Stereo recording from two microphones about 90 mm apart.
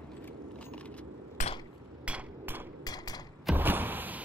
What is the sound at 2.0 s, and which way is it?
Hammer, 20° right (ahead or behind).